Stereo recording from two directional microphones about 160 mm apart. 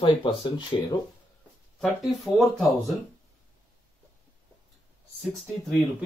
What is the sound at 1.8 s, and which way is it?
Speech, centre (ahead or behind).